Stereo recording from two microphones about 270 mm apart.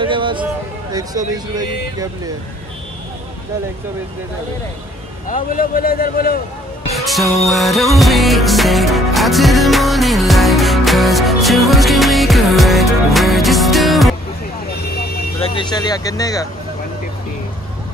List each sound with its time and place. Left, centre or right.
0.0 s music: centre
0.9 s speech: centre
5.3 s a man's voice: left
6.9 s music: centre
15.4 s speech: centre